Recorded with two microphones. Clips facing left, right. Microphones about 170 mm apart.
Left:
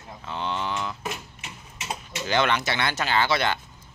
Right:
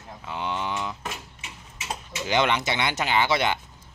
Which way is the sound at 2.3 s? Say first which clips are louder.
Even; 20° right (ahead or behind).